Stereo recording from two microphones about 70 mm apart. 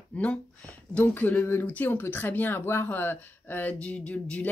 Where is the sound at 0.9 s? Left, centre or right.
Left.